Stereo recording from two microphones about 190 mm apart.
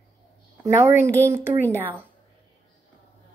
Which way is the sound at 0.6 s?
15° right (ahead or behind).